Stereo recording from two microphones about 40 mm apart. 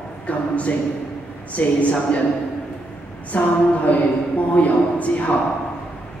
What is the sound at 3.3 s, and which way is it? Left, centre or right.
A man's voice, left.